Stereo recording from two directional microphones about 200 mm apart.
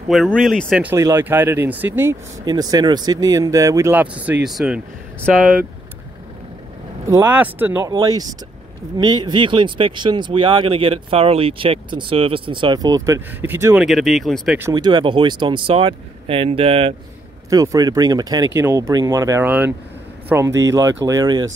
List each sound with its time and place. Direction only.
0.1 s speech: centre (ahead or behind)
7.1 s speech: 10° right (ahead or behind)
13.7 s speech: centre (ahead or behind)
14.6 s speech: 20° right (ahead or behind)
17.5 s speech: 20° right (ahead or behind)